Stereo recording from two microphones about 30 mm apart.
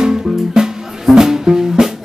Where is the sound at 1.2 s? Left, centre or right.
Centre.